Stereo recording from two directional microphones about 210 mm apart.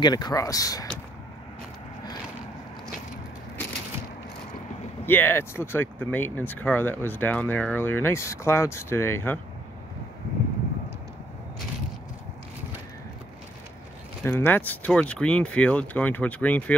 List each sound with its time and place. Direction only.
0.0 s speech: 20° left (ahead or behind)
5.0 s speech: 10° left (ahead or behind)
14.2 s speech: 10° left (ahead or behind)